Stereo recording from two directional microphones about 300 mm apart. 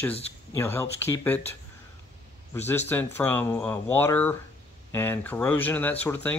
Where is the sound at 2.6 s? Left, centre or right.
Centre.